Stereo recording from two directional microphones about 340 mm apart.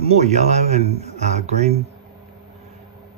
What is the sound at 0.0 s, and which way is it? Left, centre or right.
A man's voice, centre.